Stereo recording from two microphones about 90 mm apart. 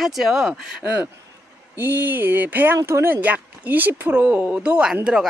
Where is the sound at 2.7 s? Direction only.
30° right (ahead or behind); by 4.9 s 10° right (ahead or behind).